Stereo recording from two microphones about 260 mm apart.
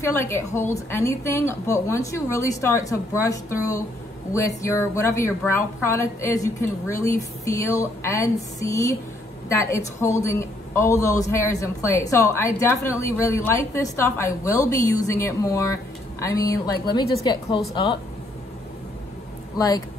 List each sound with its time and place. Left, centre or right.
0.0 s speech: centre
19.5 s speech: centre